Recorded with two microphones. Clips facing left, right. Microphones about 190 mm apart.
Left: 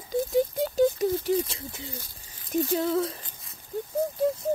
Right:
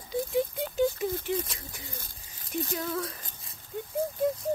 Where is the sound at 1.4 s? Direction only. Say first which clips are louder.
Left 5 dB; 25° left (ahead or behind).